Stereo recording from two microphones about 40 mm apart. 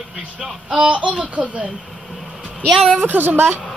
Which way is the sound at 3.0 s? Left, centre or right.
Right.